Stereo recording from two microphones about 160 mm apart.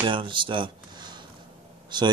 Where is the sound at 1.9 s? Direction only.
30° right (ahead or behind).